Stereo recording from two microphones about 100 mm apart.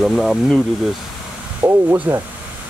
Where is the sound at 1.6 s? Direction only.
25° right (ahead or behind).